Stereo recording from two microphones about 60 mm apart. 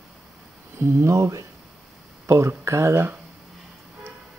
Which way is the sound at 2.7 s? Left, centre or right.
Right.